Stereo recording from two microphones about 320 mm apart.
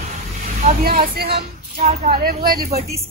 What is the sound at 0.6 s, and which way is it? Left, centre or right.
Speech, right.